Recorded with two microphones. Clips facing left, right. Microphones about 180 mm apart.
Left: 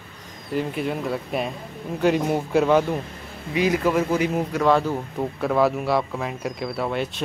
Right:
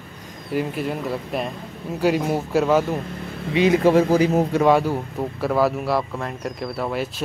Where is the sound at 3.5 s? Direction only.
25° right (ahead or behind).